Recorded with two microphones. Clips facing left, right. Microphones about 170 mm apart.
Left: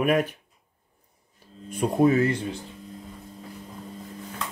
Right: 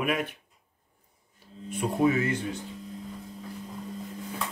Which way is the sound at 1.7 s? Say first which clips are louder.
Left 4 dB; 40° left (ahead or behind).